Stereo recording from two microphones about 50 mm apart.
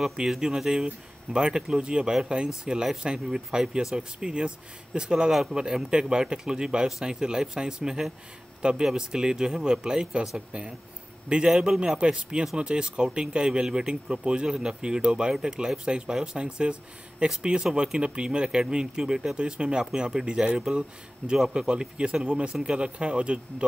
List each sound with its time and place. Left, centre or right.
0.0 s speech: centre
14.0 s speech: right
14.3 s speech: centre
21.2 s a man's voice: centre
21.5 s speech: centre